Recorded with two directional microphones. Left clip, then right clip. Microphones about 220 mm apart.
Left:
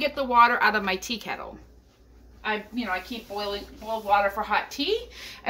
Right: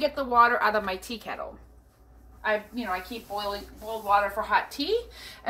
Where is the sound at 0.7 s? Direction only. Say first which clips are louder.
Left 2 dB; 85° left.